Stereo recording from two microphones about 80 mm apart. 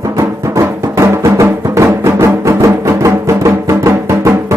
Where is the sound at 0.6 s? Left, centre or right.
Right.